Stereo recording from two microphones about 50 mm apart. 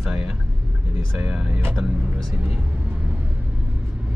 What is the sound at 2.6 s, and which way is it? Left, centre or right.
Vehicle, right.